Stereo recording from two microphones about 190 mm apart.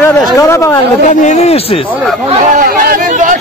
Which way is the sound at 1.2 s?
35° left (ahead or behind).